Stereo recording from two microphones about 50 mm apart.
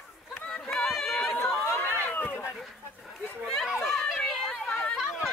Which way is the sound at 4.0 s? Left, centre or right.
Centre.